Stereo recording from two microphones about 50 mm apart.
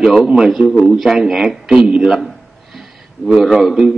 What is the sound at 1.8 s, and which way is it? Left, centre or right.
Speech, right.